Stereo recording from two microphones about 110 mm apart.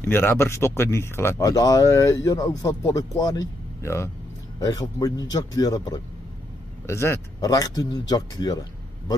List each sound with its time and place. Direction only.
0.0 s a man's voice: 20° left (ahead or behind); by 5.9 s 35° left (ahead or behind)
6.9 s speech: 25° left (ahead or behind)
7.3 s a man's voice: 35° left (ahead or behind)